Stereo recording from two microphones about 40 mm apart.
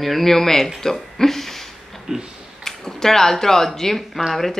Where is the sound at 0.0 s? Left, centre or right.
Centre.